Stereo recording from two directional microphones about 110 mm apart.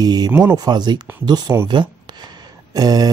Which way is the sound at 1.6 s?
45° right (ahead or behind).